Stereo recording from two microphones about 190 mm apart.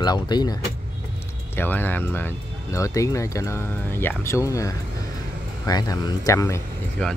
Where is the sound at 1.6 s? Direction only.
10° left (ahead or behind).